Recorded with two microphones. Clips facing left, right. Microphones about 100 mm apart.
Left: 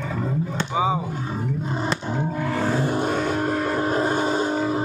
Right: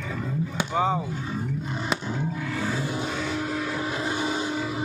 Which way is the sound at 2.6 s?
50° left (ahead or behind).